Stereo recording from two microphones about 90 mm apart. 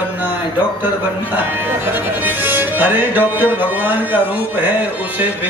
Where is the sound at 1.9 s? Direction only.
20° right (ahead or behind).